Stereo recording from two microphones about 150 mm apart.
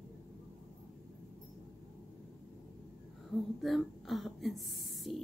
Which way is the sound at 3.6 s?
Centre (ahead or behind).